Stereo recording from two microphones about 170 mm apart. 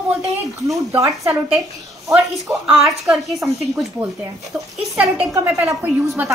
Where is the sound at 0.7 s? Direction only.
20° right (ahead or behind).